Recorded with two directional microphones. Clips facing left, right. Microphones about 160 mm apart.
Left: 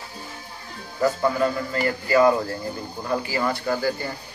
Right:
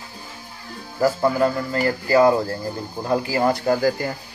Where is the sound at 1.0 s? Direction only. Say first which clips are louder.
Right 3 dB; 35° right (ahead or behind).